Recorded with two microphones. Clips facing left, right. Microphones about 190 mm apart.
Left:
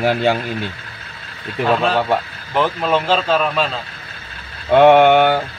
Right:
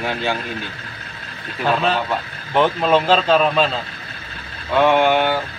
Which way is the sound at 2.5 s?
Centre (ahead or behind).